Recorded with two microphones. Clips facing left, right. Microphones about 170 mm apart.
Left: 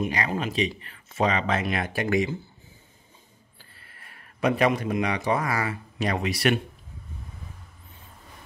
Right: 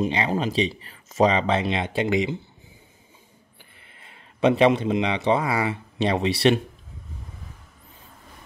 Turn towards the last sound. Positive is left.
turn(degrees=-30)  # may be behind; listen again after turning